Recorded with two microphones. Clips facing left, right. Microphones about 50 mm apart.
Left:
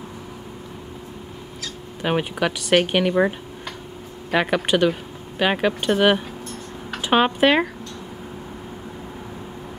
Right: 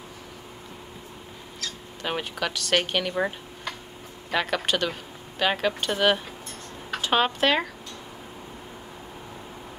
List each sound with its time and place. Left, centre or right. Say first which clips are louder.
1.6 s speech: left 5 dB; centre